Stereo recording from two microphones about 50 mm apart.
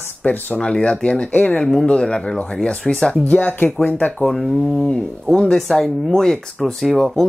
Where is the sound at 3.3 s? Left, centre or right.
Left.